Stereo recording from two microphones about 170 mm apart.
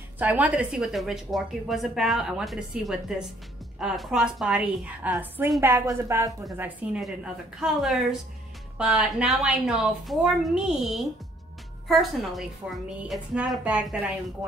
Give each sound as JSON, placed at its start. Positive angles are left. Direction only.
{"t": 0.2, "sound": "a woman's voice", "side_deg": -10}